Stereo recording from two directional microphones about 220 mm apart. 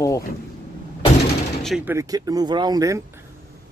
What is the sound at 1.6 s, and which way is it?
Speech, centre (ahead or behind).